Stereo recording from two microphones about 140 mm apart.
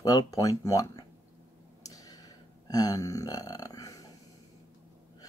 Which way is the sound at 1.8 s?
25° left (ahead or behind).